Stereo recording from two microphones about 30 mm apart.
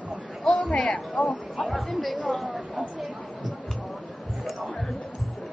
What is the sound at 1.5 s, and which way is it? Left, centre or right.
Speech, centre.